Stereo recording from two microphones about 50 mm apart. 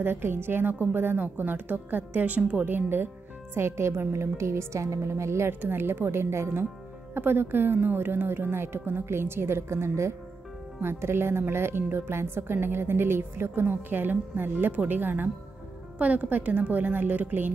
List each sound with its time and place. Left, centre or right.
0.0 s a woman's voice: right
3.5 s a woman's voice: right
5.5 s a woman's voice: right
7.2 s a woman's voice: right
10.8 s a woman's voice: right
13.7 s a woman's voice: right
16.0 s a woman's voice: right